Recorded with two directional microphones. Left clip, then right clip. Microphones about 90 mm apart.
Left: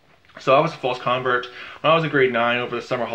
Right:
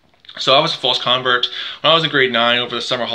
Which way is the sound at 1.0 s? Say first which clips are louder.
Right 3 dB; 40° right (ahead or behind).